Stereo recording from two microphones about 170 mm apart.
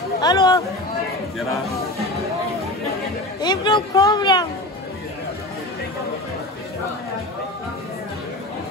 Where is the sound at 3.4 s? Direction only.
25° left (ahead or behind).